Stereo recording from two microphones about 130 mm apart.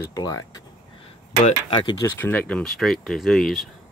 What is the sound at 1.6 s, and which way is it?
Speech, 40° left (ahead or behind).